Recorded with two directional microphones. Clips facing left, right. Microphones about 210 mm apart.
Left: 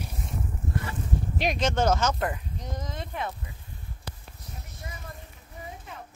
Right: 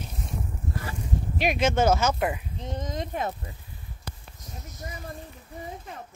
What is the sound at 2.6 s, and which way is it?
Speech, 30° right (ahead or behind).